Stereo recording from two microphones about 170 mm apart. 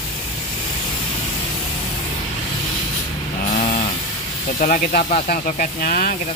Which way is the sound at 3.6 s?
50° left (ahead or behind).